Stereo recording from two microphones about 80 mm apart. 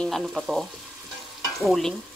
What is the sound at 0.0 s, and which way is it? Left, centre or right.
Speech, centre.